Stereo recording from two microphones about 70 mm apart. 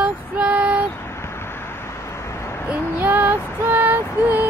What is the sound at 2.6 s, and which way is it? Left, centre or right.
Female singing, right.